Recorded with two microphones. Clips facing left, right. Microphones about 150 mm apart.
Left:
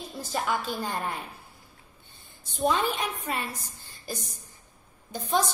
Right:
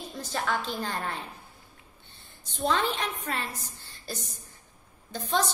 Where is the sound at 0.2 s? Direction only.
10° left (ahead or behind).